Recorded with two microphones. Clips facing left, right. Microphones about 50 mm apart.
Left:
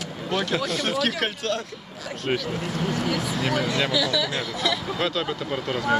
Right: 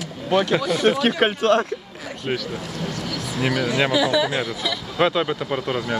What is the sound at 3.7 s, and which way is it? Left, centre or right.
Speech, right.